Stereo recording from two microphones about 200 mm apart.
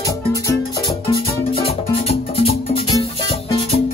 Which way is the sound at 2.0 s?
30° left (ahead or behind).